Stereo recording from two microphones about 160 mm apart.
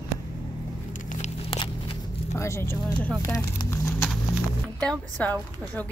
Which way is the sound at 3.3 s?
20° left (ahead or behind).